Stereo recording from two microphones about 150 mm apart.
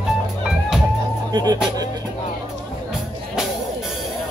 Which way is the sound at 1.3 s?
25° right (ahead or behind).